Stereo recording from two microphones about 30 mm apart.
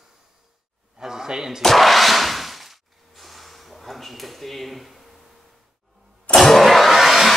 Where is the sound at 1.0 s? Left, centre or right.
Centre.